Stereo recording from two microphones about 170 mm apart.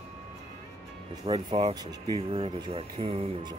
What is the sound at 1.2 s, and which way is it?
Speech, 30° right (ahead or behind).